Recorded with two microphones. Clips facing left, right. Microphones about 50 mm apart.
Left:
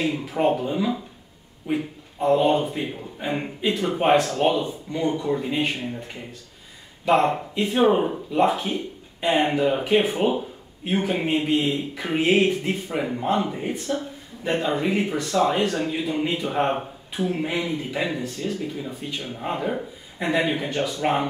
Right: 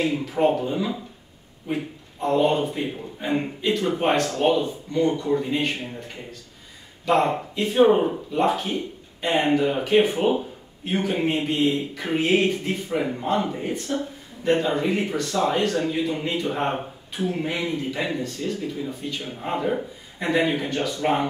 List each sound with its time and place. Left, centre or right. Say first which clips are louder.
0.3 s a man's voice: even; centre
7.1 s a man's voice: left 1 dB; centre
19.1 s a man's voice: left 1 dB; centre